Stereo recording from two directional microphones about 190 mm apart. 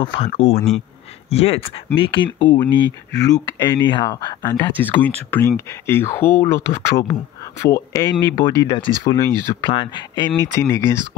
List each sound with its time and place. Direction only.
0.0 s speech: 30° left (ahead or behind)
9.0 s speech: 15° left (ahead or behind)
9.6 s speech: 25° left (ahead or behind)